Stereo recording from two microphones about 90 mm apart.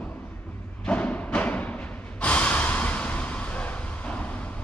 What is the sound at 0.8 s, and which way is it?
Music, 15° left (ahead or behind).